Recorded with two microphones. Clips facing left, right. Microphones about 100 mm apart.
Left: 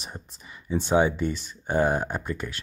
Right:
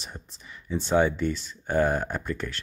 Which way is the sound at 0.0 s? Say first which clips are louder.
Left 2 dB; 15° left (ahead or behind).